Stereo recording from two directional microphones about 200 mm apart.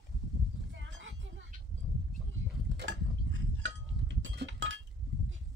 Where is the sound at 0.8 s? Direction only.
70° right (ahead or behind).